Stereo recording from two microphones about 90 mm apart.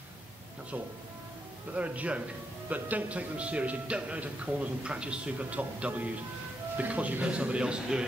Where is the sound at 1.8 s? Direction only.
15° right (ahead or behind).